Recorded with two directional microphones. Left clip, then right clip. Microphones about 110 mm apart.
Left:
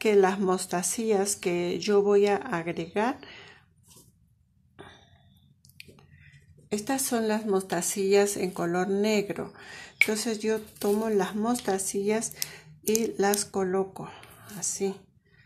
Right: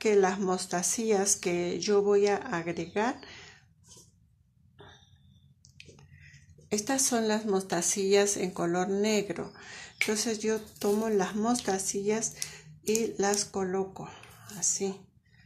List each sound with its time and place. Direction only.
0.0 s speech: 35° left (ahead or behind)
6.1 s speech: 10° left (ahead or behind); by 12.3 s 35° left (ahead or behind)
12.4 s a sound: 35° left (ahead or behind)
12.9 s speech: 30° left (ahead or behind)